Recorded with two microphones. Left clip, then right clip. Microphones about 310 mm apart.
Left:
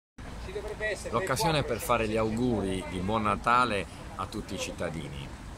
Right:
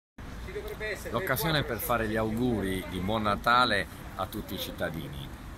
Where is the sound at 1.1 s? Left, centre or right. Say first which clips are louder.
Left 1 dB; centre.